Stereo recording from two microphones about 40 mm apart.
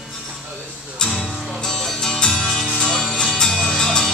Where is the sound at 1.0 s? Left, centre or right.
Centre.